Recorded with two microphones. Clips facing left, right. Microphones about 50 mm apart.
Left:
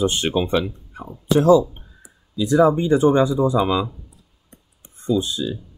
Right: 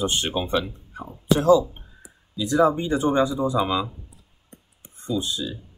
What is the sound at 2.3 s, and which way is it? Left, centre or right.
Speech, left.